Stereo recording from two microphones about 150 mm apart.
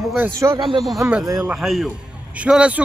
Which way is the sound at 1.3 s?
Centre (ahead or behind).